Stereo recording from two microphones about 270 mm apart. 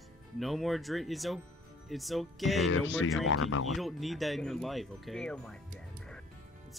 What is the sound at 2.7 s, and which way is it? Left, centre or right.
Speech, left.